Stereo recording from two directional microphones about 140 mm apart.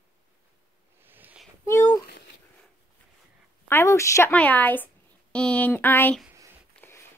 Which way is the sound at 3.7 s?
20° left (ahead or behind).